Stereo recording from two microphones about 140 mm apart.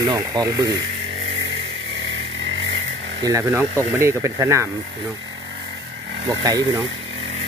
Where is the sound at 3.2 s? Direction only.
25° right (ahead or behind).